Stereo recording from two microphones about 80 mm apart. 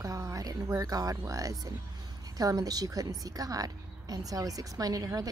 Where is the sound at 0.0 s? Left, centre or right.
Right.